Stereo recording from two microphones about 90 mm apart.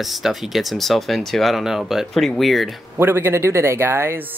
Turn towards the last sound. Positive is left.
turn(degrees=-25)  # may be behind; listen again after turning